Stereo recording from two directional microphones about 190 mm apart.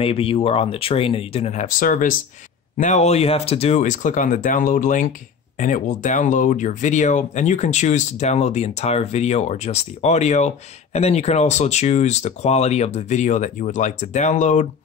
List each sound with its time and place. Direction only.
0.0 s speech: 30° left (ahead or behind)